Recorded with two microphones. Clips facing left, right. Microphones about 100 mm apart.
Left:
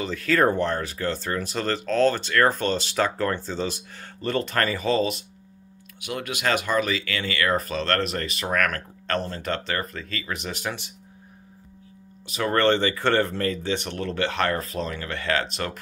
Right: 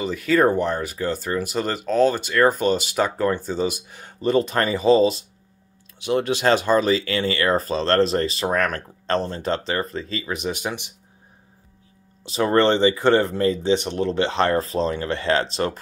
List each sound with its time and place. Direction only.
0.0 s speech: 10° right (ahead or behind)
12.3 s speech: 25° right (ahead or behind)